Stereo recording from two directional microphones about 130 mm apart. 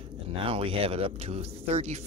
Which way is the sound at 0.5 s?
45° right (ahead or behind).